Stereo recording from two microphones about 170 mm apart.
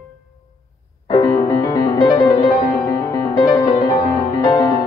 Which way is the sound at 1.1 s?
20° left (ahead or behind).